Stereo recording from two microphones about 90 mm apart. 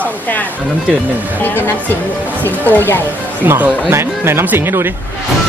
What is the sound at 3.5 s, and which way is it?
Speech, 20° right (ahead or behind).